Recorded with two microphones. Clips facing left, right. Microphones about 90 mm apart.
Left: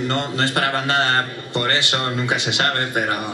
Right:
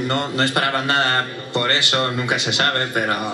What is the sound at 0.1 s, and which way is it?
Speech, 20° right (ahead or behind).